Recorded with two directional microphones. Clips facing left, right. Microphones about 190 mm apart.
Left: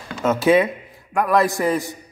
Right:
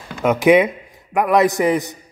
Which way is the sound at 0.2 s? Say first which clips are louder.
Right 3 dB; 15° right (ahead or behind).